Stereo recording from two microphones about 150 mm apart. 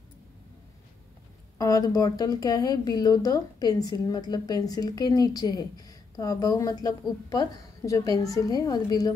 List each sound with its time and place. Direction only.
1.6 s speech: 25° left (ahead or behind)